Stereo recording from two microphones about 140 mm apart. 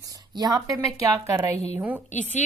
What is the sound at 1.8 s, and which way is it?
Speech, 10° right (ahead or behind).